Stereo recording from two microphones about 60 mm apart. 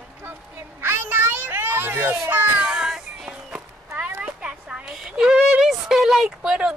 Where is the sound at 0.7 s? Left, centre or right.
Right.